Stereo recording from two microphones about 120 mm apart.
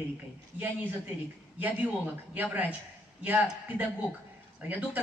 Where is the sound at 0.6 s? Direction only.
15° right (ahead or behind).